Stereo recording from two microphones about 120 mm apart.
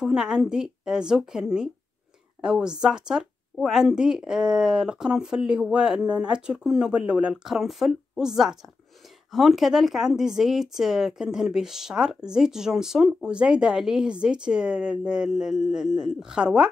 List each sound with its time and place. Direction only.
0.0 s a woman's voice: 5° right (ahead or behind)